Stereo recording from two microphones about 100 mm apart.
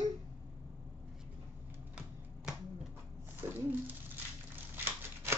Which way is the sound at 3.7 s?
20° right (ahead or behind).